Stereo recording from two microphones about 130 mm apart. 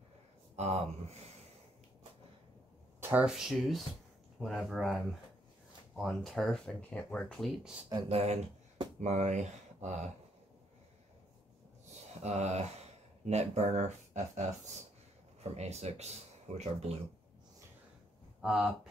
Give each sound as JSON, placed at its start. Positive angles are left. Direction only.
{"t": 0.6, "sound": "speech", "side_deg": -60}
{"t": 3.0, "sound": "a sound", "side_deg": -15}
{"t": 3.3, "sound": "speech", "side_deg": -5}
{"t": 8.1, "sound": "speech", "side_deg": -50}
{"t": 12.2, "sound": "speech", "side_deg": -60}
{"t": 18.4, "sound": "speech", "side_deg": -5}